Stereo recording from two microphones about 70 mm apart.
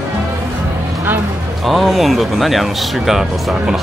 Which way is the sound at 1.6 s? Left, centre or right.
Centre.